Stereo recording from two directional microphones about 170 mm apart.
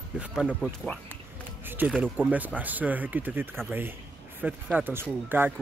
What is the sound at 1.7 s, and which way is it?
Speech, 10° right (ahead or behind).